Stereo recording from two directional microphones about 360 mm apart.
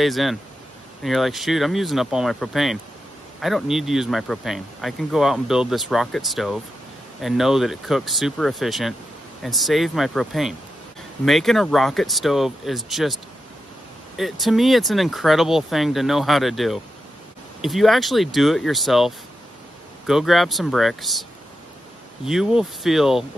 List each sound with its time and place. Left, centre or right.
0.0 s speech: centre